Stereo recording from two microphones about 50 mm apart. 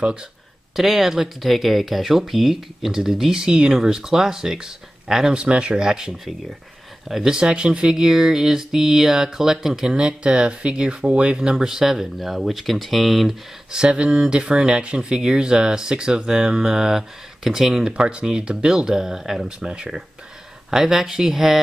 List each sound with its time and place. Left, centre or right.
0.7 s speech: centre
11.5 s speech: centre
13.7 s speech: centre
19.6 s speech: centre
20.7 s speech: centre